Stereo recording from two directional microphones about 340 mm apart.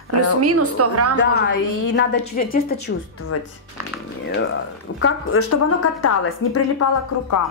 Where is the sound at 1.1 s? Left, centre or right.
Left.